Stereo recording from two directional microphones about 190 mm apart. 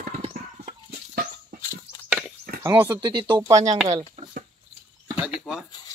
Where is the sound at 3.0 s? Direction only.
25° right (ahead or behind).